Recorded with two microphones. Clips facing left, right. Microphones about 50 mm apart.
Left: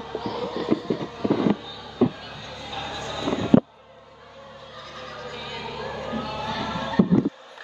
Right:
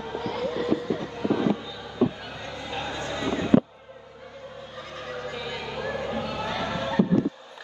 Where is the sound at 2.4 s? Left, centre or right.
Right.